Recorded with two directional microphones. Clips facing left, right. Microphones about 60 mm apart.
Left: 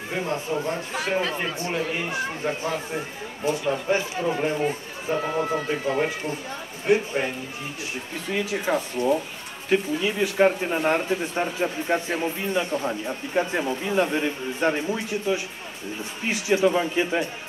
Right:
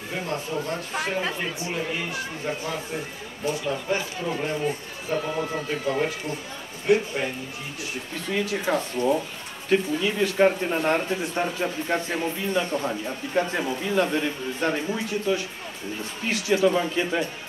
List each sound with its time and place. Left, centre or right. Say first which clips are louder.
0.1 s speech: left 2 dB; left
2.0 s speech: left 3 dB; left
8.3 s speech: even; centre